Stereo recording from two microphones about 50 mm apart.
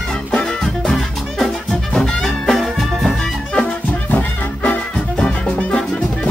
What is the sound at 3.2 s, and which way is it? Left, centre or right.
Music, centre.